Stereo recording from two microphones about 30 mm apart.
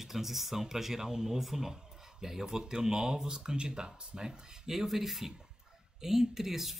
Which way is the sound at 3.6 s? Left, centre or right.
Right.